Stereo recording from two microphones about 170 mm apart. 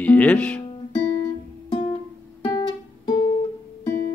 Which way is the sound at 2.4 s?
25° left (ahead or behind).